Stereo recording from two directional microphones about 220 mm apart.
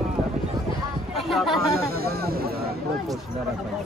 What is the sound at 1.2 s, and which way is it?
Speech, centre (ahead or behind).